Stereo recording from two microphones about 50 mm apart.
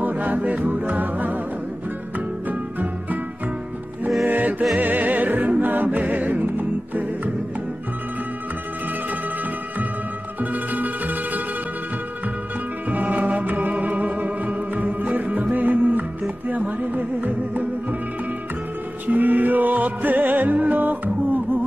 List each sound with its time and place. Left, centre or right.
0.0 s music: right
4.3 s music: right
10.4 s music: right
12.9 s music: right
19.0 s music: right